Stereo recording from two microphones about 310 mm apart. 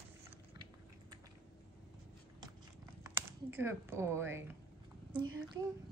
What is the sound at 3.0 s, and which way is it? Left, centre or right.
Speech, centre.